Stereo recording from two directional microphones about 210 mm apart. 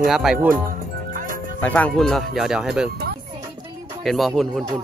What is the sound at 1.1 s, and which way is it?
Music, 40° right (ahead or behind).